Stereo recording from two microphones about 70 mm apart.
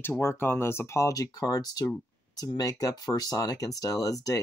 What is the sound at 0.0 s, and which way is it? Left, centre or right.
Speech, left.